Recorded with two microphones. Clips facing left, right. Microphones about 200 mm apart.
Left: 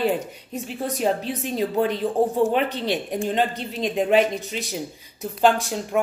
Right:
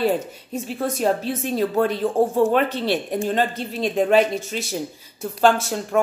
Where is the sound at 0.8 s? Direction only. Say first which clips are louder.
Right 2 dB; 15° left (ahead or behind).